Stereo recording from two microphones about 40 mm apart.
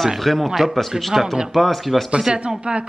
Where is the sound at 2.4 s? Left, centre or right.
Right.